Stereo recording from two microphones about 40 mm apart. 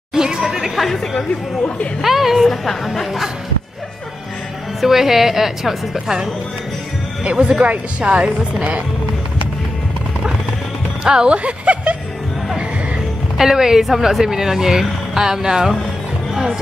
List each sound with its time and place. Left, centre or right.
0.1 s chatter: centre
2.0 s speech: centre
2.4 s a woman's voice: centre
4.8 s a woman's voice: centre
7.2 s speech: right
11.1 s speech: right
13.4 s a woman's voice: centre